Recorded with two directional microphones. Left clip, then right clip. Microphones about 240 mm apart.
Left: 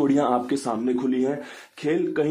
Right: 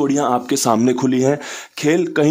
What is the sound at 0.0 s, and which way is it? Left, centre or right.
Speech, right.